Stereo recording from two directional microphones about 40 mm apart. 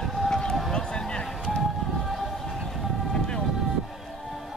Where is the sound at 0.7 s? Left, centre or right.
Centre.